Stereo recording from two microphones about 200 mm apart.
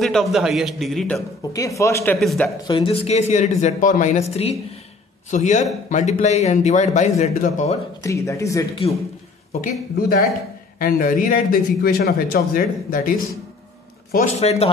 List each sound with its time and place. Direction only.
0.0 s a man's voice: centre (ahead or behind)
1.4 s speech: 15° left (ahead or behind)
2.1 s a man's voice: centre (ahead or behind)
2.6 s a man's voice: 25° left (ahead or behind); by 7.7 s 40° left (ahead or behind)
8.0 s speech: 15° left (ahead or behind)
9.5 s a man's voice: 50° left (ahead or behind)
14.4 s a man's voice: 30° left (ahead or behind)